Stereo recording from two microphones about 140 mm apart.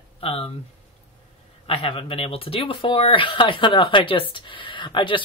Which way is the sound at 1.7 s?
40° left (ahead or behind).